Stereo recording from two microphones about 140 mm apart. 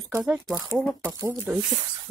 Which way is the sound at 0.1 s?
10° right (ahead or behind).